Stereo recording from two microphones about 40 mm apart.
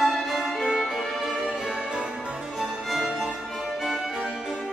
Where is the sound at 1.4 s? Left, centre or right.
Right.